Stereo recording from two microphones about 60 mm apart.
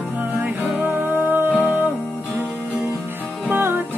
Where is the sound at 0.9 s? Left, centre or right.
Right.